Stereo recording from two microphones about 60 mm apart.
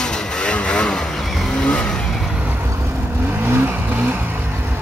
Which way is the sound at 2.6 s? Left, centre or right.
Right.